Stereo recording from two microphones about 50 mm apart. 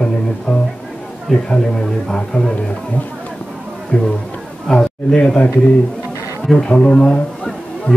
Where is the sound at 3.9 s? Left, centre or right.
Centre.